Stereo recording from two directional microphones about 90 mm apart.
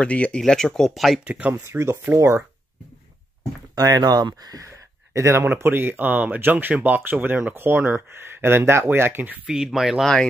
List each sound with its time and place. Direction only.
0.0 s speech: 15° left (ahead or behind)
1.2 s speech: 15° right (ahead or behind)
1.5 s speech: 30° right (ahead or behind)
3.7 s speech: 45° right (ahead or behind)
4.6 s speech: 30° right (ahead or behind)
9.5 s speech: 5° right (ahead or behind)